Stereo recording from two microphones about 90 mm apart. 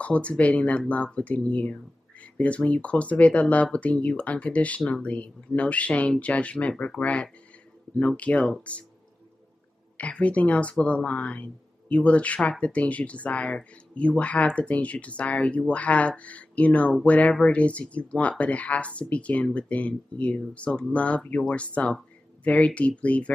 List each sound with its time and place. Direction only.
0.0 s speech: 15° left (ahead or behind)
9.9 s speech: 15° left (ahead or behind)